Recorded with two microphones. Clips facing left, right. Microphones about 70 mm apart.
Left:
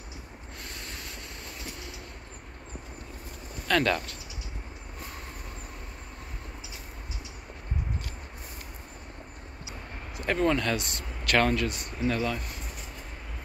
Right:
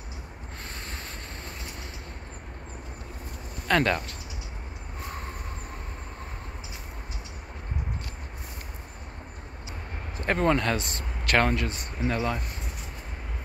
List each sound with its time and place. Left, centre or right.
3.6 s speech: right
10.1 s speech: right